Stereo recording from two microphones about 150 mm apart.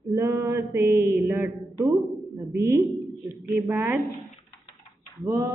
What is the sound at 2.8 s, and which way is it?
Speech, centre (ahead or behind).